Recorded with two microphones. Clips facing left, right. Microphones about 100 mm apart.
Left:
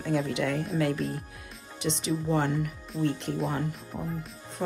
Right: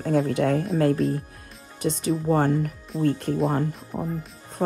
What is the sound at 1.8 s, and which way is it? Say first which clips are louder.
Speech: right 5 dB; 45° right (ahead or behind).